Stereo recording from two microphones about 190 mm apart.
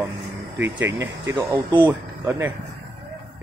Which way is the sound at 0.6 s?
70° right (ahead or behind).